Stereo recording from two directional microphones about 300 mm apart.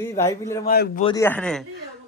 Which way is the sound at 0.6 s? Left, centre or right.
Left.